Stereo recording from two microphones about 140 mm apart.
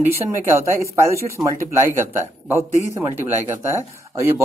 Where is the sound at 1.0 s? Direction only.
20° right (ahead or behind).